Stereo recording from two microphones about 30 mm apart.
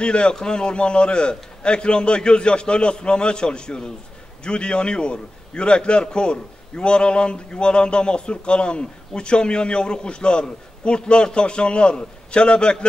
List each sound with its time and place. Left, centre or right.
0.0 s a man's voice: left